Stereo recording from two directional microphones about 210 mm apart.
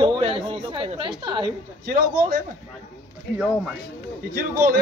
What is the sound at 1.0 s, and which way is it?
Speech, 25° right (ahead or behind).